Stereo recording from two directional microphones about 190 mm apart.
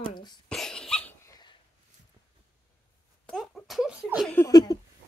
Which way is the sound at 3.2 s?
Centre (ahead or behind).